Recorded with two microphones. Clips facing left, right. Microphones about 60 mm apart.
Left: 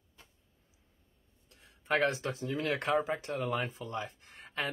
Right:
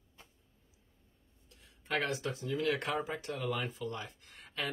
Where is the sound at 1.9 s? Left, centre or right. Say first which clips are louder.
Left 4 dB; left.